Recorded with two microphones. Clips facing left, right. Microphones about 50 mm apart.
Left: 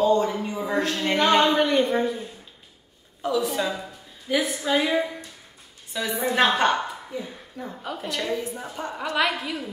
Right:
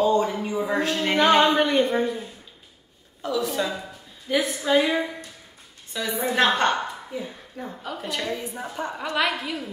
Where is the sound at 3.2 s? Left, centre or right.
Centre.